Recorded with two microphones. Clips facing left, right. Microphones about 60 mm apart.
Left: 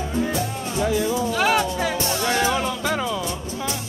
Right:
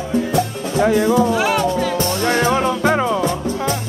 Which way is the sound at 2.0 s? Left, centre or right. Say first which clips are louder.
Right 4 dB; right.